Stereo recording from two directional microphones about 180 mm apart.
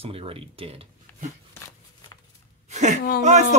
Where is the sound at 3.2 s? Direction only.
40° right (ahead or behind).